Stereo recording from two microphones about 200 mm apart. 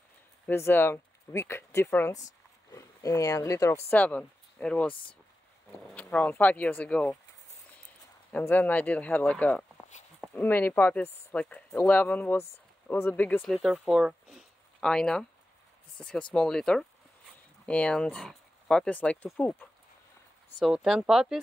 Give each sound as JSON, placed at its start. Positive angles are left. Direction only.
{"t": 0.5, "sound": "speech", "side_deg": 10}
{"t": 5.9, "sound": "speech", "side_deg": 5}
{"t": 8.3, "sound": "speech", "side_deg": 10}
{"t": 20.5, "sound": "speech", "side_deg": 0}